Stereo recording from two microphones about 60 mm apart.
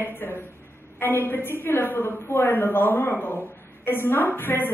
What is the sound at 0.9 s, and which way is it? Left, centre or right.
A woman's voice, left.